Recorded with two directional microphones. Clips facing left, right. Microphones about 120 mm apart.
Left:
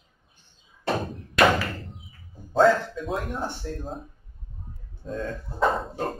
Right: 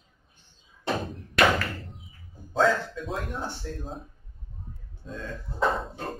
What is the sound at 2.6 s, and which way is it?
Speech, centre (ahead or behind).